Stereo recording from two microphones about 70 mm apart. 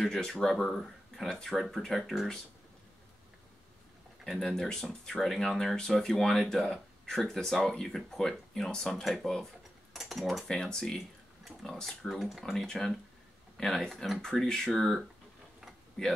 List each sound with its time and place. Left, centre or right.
0.0 s speech: centre
4.2 s speech: centre
10.5 s speech: centre